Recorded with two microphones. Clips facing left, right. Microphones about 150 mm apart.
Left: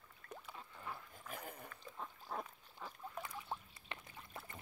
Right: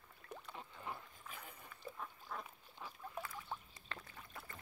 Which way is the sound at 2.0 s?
35° left (ahead or behind).